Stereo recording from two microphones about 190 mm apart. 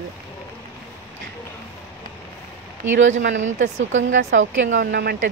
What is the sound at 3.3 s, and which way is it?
Speech, 40° right (ahead or behind).